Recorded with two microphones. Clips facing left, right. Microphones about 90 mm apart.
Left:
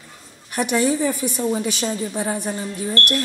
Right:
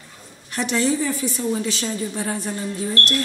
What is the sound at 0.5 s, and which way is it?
A woman's voice, 15° left (ahead or behind).